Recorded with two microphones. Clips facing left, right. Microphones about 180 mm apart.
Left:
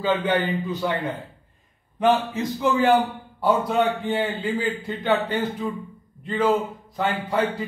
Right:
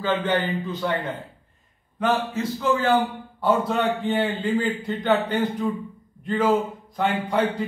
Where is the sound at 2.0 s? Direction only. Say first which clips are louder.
Left 3 dB; 15° left (ahead or behind).